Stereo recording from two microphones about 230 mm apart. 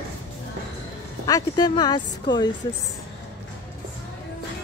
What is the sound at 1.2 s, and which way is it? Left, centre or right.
Speech, centre.